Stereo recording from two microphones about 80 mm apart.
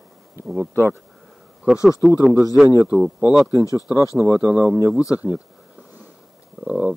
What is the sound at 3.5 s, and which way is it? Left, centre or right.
Speech, left.